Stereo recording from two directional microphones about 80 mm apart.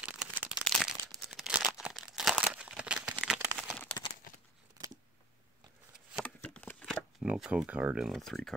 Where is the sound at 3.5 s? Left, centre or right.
Centre.